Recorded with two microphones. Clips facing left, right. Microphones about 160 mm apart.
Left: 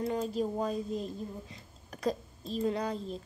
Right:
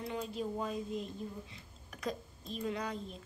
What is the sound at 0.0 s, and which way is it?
A woman's voice, 45° left (ahead or behind).